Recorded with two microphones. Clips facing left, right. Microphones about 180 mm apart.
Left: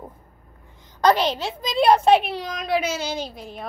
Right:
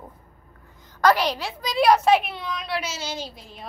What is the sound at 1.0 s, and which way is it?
A woman's voice, 25° left (ahead or behind).